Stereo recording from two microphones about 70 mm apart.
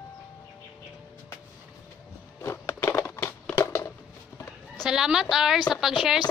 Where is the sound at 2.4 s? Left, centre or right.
Left.